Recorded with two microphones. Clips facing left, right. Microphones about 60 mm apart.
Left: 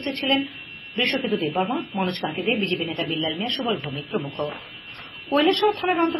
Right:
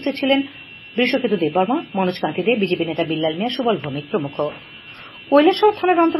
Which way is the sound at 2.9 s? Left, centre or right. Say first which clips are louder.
Right 6 dB; right.